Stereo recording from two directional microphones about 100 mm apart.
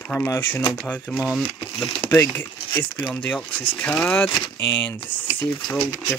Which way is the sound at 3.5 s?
15° left (ahead or behind).